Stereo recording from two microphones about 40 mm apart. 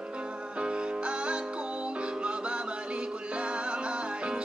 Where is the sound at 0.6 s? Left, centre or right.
Right.